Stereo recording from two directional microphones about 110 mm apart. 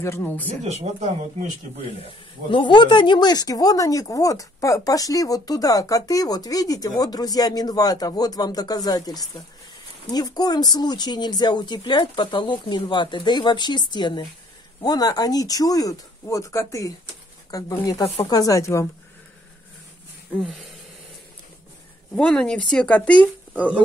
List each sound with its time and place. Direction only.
0.0 s speech: 20° left (ahead or behind)
0.7 s speech: 90° right
2.5 s speech: 45° left (ahead or behind); by 18.9 s 30° left (ahead or behind)
22.1 s speech: 5° left (ahead or behind)
23.5 s speech: 10° right (ahead or behind)